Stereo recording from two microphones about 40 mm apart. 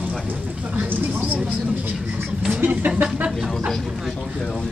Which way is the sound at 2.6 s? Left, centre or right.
Right.